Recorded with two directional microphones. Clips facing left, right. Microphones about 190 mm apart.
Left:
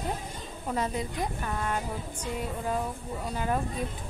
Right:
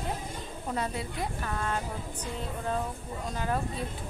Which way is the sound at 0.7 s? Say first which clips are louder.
Left 3 dB; 15° left (ahead or behind).